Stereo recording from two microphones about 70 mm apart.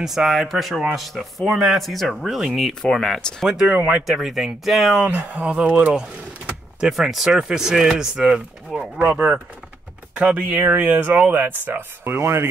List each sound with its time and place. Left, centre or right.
0.0 s speech: centre
3.4 s speech: centre
4.0 s speech: centre
5.1 s speech: centre
6.8 s speech: centre; by 12.4 s right